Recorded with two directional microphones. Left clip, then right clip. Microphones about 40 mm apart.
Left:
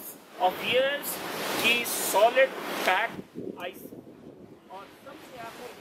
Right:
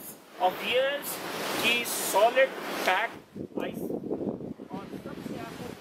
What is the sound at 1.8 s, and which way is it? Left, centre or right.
Speech, centre.